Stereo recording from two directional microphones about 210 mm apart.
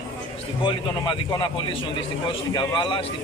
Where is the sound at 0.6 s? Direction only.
25° left (ahead or behind).